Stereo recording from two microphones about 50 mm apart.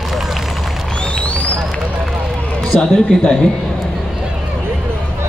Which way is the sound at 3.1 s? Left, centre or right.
Centre.